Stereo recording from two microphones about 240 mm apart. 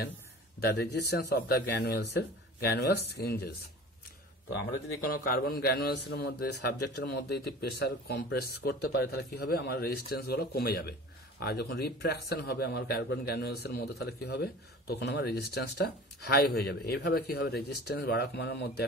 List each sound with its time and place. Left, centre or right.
0.7 s a man's voice: left